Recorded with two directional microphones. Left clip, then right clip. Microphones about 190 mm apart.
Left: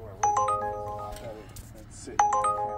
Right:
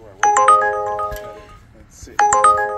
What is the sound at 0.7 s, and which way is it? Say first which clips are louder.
Music: right 14 dB; 15° right (ahead or behind).